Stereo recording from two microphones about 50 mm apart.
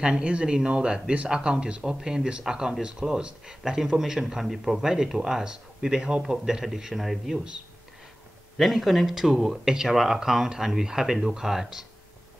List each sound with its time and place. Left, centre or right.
0.0 s a man's voice: right
8.5 s a man's voice: centre